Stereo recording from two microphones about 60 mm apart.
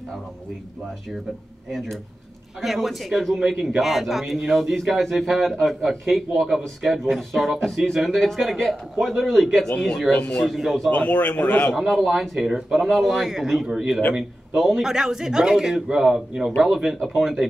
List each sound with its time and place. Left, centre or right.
2.6 s a man's voice: centre
10.1 s a man's voice: left
10.5 s a man's voice: centre
10.9 s a man's voice: left
11.7 s a man's voice: centre